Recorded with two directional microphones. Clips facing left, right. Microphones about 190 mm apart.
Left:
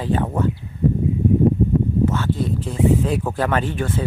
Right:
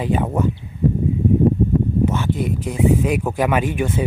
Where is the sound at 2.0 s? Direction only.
15° right (ahead or behind).